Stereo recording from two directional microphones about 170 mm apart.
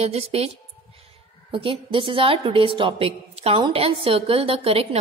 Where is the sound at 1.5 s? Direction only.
30° right (ahead or behind).